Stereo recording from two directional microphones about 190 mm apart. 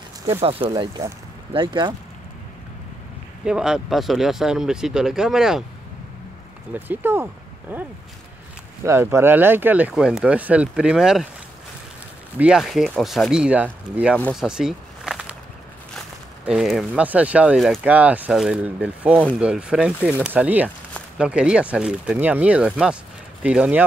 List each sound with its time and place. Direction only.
0.4 s speech: 30° right (ahead or behind)
3.4 s speech: 5° right (ahead or behind)
6.7 s speech: 10° right (ahead or behind)
12.4 s speech: 5° right (ahead or behind)
14.1 s a sound: 5° left (ahead or behind)
16.4 s speech: centre (ahead or behind)